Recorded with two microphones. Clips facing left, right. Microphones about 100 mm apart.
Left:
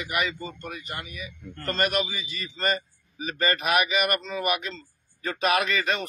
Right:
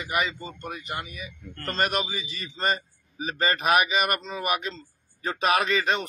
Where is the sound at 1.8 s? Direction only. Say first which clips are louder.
Even; 30° right (ahead or behind).